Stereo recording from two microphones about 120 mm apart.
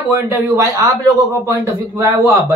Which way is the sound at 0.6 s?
30° right (ahead or behind).